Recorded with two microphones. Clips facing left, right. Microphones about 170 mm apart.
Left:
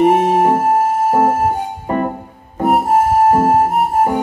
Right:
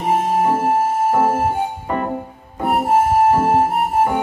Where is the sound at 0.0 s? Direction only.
65° left (ahead or behind).